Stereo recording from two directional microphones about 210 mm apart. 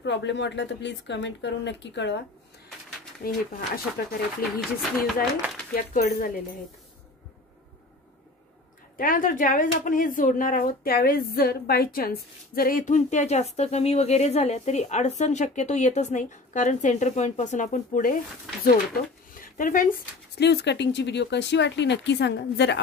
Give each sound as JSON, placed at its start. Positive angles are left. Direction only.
{"t": 0.0, "sound": "speech", "side_deg": 55}
{"t": 3.2, "sound": "speech", "side_deg": 45}
{"t": 4.4, "sound": "speech", "side_deg": 0}
{"t": 5.8, "sound": "speech", "side_deg": 40}
{"t": 8.9, "sound": "speech", "side_deg": 40}